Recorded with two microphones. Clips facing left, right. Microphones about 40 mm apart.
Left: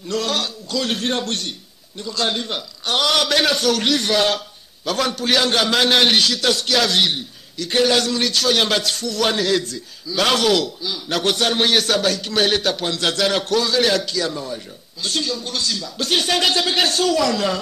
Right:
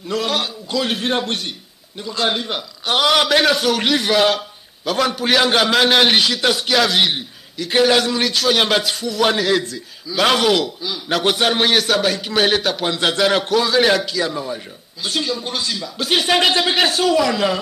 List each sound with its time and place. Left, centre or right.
0.1 s a man's voice: centre